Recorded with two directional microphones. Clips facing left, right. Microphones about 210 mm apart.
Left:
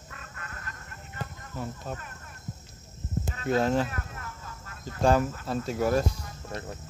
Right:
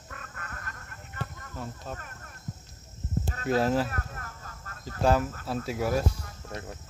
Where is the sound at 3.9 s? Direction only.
45° right (ahead or behind).